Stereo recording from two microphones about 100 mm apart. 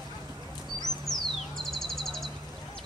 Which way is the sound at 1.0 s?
Centre (ahead or behind).